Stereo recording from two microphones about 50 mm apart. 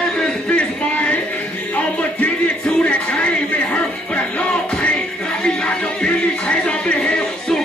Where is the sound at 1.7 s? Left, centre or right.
Left.